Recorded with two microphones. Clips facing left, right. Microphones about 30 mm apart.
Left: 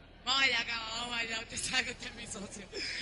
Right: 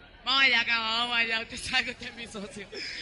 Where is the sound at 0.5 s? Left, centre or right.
Right.